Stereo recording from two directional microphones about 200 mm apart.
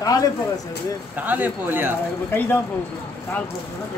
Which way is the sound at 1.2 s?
10° right (ahead or behind).